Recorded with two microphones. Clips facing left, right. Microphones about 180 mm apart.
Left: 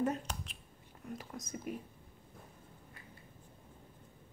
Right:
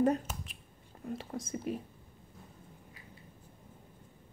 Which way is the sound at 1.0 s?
30° right (ahead or behind).